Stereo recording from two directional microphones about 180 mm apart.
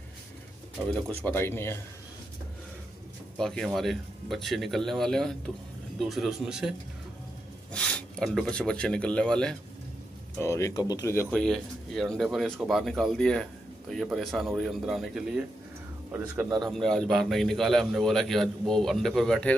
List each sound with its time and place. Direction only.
1.2 s speech: 10° left (ahead or behind)
3.3 s a man's voice: centre (ahead or behind)
7.7 s speech: 5° left (ahead or behind)
10.4 s speech: 15° left (ahead or behind)
11.2 s a man's voice: centre (ahead or behind)
16.6 s a man's voice: centre (ahead or behind)